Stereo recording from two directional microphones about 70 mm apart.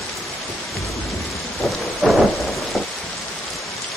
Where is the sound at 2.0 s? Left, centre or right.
Centre.